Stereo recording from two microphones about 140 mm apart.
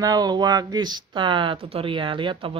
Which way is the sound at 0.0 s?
25° right (ahead or behind).